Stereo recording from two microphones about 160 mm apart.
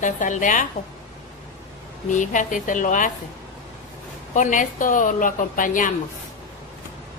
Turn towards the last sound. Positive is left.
turn(degrees=55)  # may be behind; listen again after turning